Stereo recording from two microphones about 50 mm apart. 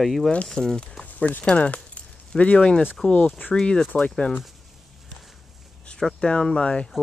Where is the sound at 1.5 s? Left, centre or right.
Left.